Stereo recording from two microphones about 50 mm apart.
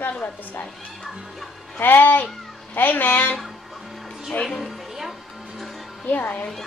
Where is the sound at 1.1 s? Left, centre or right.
Centre.